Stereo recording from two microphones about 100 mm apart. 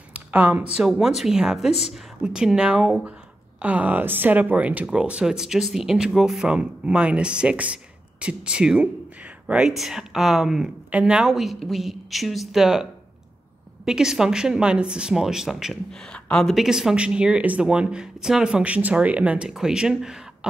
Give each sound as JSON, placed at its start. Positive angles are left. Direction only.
{"t": 0.1, "sound": "a sound", "side_deg": -15}
{"t": 0.7, "sound": "speech", "side_deg": -5}
{"t": 13.8, "sound": "speech", "side_deg": -5}